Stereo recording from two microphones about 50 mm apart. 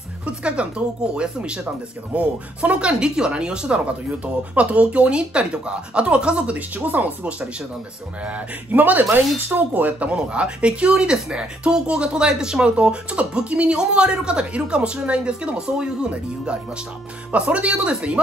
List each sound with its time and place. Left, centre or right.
0.4 s speech: right